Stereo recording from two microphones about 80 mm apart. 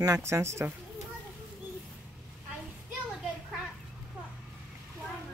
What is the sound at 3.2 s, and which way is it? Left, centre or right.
Children playing, centre.